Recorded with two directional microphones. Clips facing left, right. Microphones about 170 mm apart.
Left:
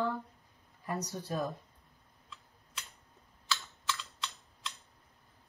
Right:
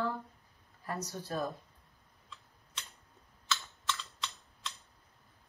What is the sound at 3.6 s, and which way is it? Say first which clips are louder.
Typing: even; centre (ahead or behind).